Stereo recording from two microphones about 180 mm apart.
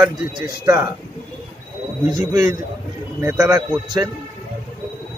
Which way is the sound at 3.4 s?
20° right (ahead or behind).